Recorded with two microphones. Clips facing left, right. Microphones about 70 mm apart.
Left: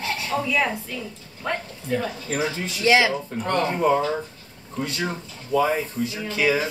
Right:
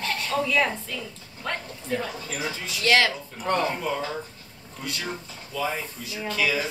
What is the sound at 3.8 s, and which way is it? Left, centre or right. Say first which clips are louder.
Speech: left 9 dB; left.